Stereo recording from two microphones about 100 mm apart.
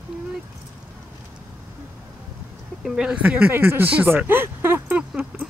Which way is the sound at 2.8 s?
5° right (ahead or behind).